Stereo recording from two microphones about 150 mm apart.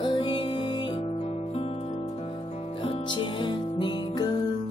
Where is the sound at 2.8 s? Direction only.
35° left (ahead or behind).